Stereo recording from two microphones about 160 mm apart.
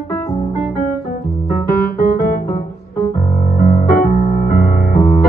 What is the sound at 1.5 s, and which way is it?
Piano, 65° left (ahead or behind).